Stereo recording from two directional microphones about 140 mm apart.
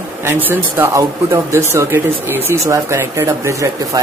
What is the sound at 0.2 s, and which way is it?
Speech, 15° right (ahead or behind).